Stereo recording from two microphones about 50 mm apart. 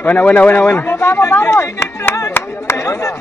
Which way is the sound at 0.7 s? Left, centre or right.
Left.